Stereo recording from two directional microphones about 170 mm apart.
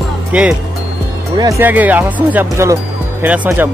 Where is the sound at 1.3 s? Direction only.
20° right (ahead or behind).